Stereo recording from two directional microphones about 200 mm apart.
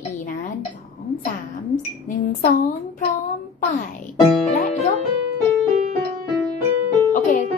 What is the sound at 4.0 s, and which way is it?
Music, 40° left (ahead or behind).